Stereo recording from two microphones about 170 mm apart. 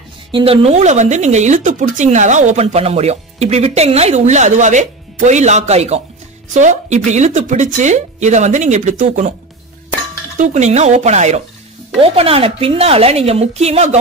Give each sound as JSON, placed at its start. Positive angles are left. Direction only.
{"t": 0.3, "sound": "speech", "side_deg": -30}
{"t": 10.3, "sound": "speech", "side_deg": -45}